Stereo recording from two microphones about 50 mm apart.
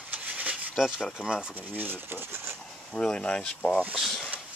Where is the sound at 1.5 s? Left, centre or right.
Right.